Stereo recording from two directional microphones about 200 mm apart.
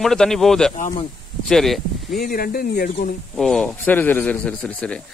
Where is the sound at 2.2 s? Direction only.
45° left (ahead or behind).